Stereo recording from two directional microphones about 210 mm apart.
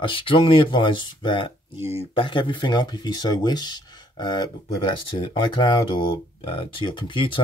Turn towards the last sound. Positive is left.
turn(degrees=25)  # may be behind; listen again after turning